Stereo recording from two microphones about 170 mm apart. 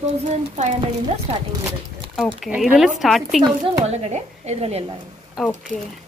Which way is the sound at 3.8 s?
40° right (ahead or behind).